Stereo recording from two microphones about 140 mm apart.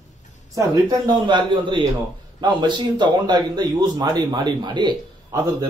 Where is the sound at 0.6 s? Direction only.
30° right (ahead or behind).